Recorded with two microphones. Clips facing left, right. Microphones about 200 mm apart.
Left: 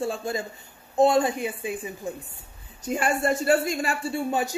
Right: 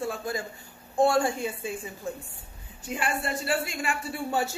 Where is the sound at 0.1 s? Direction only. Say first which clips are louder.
Left 3 dB; 25° left (ahead or behind).